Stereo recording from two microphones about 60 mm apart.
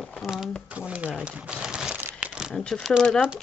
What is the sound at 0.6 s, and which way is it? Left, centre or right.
Speech, right.